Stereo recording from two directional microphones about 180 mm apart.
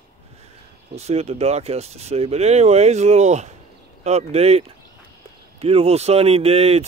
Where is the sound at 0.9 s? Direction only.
35° right (ahead or behind).